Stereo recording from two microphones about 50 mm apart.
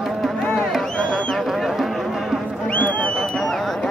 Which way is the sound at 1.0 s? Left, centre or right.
Centre.